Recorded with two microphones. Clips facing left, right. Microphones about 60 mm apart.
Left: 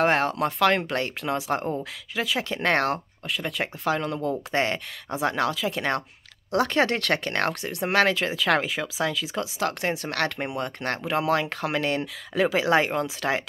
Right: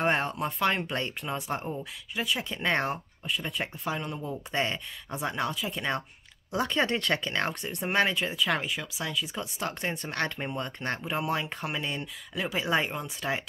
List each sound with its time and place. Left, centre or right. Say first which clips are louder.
0.0 s speech: left 5 dB; left
2.1 s speech: left 4 dB; left
4.5 s speech: left 5 dB; left
11.1 s speech: left 8 dB; left